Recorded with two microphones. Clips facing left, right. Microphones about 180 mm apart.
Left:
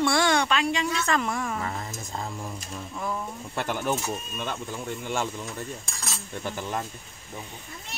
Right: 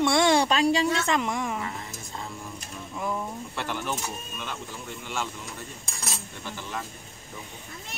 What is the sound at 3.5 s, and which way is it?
Speech, 45° left (ahead or behind).